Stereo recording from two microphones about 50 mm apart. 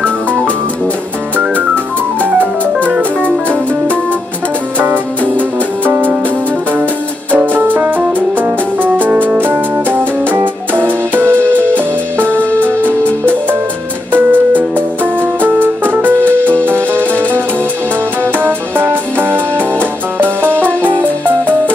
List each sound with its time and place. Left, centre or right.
4.7 s music: right
7.3 s music: right
14.1 s music: right
18.4 s music: right